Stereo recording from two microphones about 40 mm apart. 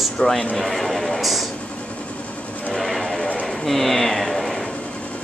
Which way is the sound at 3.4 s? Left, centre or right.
Centre.